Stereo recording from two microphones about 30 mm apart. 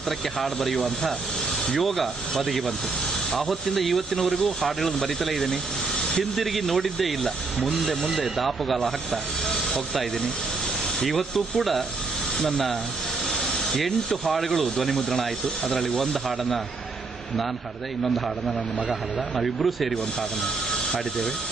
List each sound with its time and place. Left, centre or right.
0.4 s speech: centre
5.9 s a sound: left
6.3 s speech: centre
8.4 s speech: centre
11.0 s speech: centre
19.3 s speech: centre
20.7 s speech: centre